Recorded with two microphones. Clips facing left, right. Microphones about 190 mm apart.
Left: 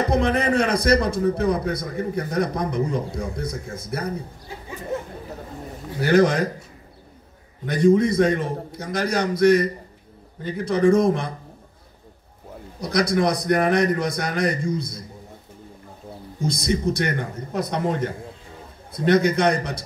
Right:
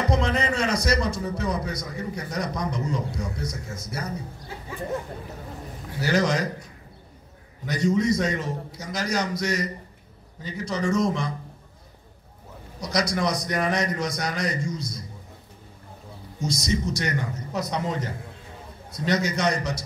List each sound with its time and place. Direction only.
0.1 s a man's voice: 55° left (ahead or behind)
5.9 s a man's voice: 55° left (ahead or behind)
7.6 s a man's voice: 55° left (ahead or behind)
12.8 s a man's voice: 55° left (ahead or behind)
16.3 s a man's voice: 55° left (ahead or behind)